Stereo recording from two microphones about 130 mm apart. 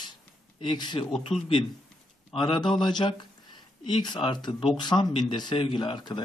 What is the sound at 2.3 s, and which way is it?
A man's voice, 40° left (ahead or behind).